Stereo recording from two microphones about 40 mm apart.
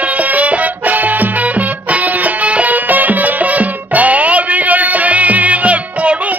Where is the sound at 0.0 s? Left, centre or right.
Right.